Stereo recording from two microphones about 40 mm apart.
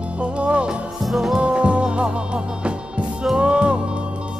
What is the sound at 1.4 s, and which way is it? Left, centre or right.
Music, right.